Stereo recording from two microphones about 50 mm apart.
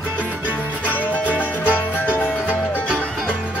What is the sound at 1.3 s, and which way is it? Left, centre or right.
Music, left.